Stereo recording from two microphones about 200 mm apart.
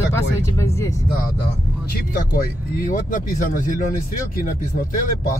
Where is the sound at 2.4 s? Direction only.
40° left (ahead or behind).